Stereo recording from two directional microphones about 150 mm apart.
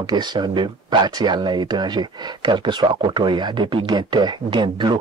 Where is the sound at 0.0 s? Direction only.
30° right (ahead or behind).